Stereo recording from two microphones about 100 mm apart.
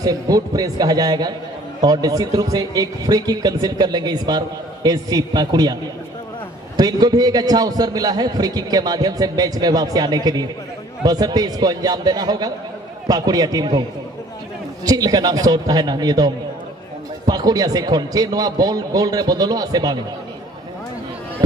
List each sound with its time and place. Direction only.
0.0 s a man's voice: 35° right (ahead or behind)
6.8 s a man's voice: 40° right (ahead or behind)
14.9 s a man's voice: 40° right (ahead or behind)
17.3 s a man's voice: 40° right (ahead or behind)